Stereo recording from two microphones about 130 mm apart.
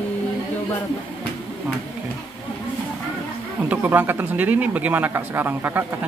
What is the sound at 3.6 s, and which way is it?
Speech, 15° right (ahead or behind).